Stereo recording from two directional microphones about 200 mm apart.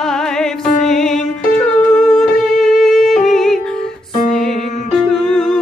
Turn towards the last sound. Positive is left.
turn(degrees=5)  # may be behind; listen again after turning